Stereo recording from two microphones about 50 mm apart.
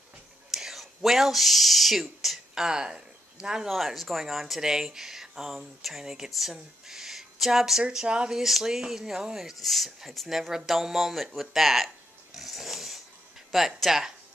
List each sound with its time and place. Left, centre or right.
0.5 s speech: centre
3.6 s speech: centre
12.4 s snort: centre
13.5 s speech: centre